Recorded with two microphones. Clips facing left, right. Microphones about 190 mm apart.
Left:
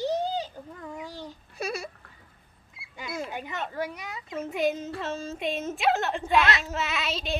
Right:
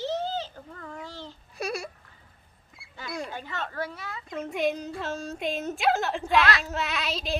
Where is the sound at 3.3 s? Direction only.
15° left (ahead or behind).